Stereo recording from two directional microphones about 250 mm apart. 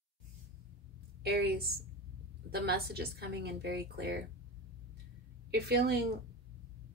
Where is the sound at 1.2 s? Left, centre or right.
Right.